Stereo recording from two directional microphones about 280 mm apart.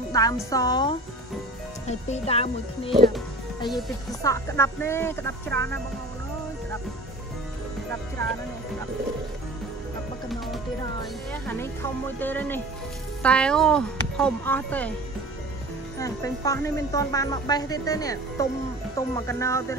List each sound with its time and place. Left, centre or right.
0.1 s speech: centre
11.4 s speech: centre
16.0 s speech: centre